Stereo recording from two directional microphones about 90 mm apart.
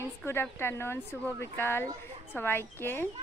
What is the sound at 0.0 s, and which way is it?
Speech, 25° left (ahead or behind).